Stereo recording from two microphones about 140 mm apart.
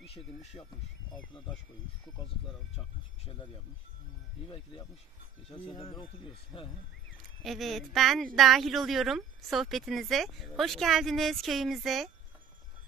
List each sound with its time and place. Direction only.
0.1 s speech: 45° left (ahead or behind)
3.3 s speech: 35° left (ahead or behind)
5.8 s speech: 45° left (ahead or behind)
7.4 s speech: centre (ahead or behind)